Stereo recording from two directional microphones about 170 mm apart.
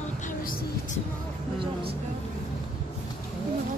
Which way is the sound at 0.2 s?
55° left (ahead or behind).